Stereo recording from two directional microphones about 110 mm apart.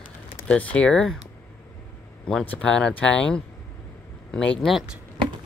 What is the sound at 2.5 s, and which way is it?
Speech, 10° left (ahead or behind).